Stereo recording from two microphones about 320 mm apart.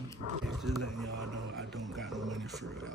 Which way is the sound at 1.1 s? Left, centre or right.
Right.